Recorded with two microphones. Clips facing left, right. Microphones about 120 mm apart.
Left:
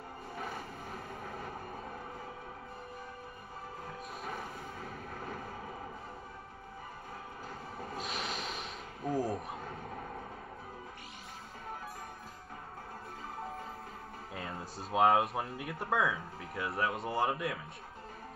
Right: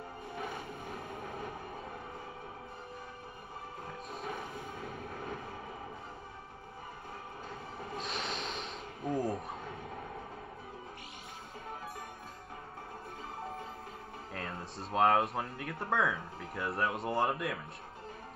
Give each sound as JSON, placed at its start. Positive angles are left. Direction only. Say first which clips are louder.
{"t": 4.1, "sound": "music", "louder": "right 2 dB", "side_deg": -25}
{"t": 4.9, "sound": "vehicle", "louder": "right 1 dB", "side_deg": -40}
{"t": 8.0, "sound": "snort", "louder": "even", "side_deg": 0}
{"t": 9.1, "sound": "a sound", "louder": "even", "side_deg": 25}
{"t": 14.3, "sound": "speech", "louder": "even", "side_deg": 0}